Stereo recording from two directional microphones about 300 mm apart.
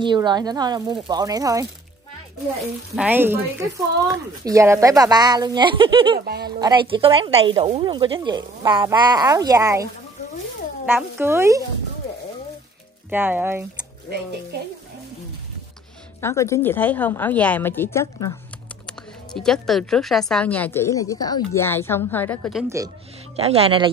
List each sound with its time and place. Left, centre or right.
0.0 s speech: centre
3.0 s speech: centre
6.1 s speech: right
6.6 s speech: centre
10.9 s speech: centre
13.1 s speech: centre
16.2 s a woman's voice: centre
23.3 s speech: centre